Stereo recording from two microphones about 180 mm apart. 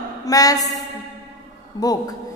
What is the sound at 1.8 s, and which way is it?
Speech, 20° left (ahead or behind).